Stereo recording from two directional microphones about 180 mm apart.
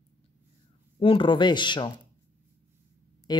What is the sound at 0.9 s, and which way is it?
Speech, 30° left (ahead or behind).